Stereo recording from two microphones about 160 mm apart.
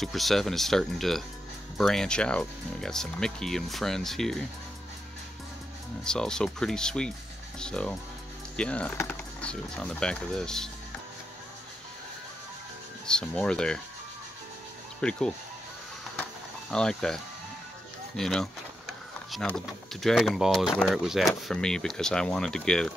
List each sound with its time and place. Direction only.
0.0 s speech: centre (ahead or behind)
6.0 s speech: 5° left (ahead or behind)
13.0 s speech: 5° left (ahead or behind)
15.0 s speech: 5° left (ahead or behind)
16.7 s speech: 5° left (ahead or behind)
18.1 s a sound: 5° left (ahead or behind)
19.4 s speech: centre (ahead or behind)